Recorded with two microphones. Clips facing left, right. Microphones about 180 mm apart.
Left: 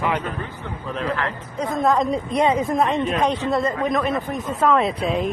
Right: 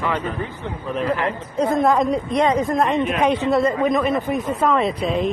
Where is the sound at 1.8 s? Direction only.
5° right (ahead or behind).